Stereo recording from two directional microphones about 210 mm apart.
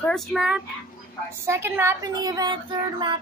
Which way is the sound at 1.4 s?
10° right (ahead or behind).